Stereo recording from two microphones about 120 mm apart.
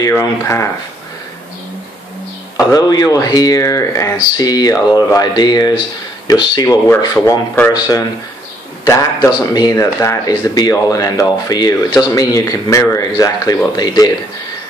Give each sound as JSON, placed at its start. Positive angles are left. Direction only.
{"t": 0.1, "sound": "speech", "side_deg": 25}
{"t": 2.5, "sound": "speech", "side_deg": 30}
{"t": 7.2, "sound": "speech", "side_deg": 20}
{"t": 8.8, "sound": "speech", "side_deg": 25}